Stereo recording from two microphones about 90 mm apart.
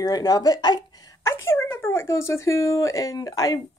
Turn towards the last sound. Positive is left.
turn(degrees=40)  # may be behind; listen again after turning